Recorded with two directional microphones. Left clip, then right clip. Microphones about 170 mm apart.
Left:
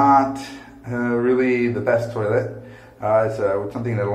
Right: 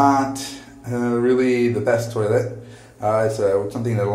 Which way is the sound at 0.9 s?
20° right (ahead or behind).